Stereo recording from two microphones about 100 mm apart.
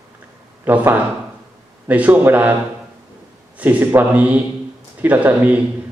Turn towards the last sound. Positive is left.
turn(degrees=-15)  # may be behind; listen again after turning